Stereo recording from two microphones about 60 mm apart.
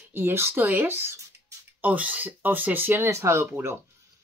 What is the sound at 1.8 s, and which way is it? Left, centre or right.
Speech, right.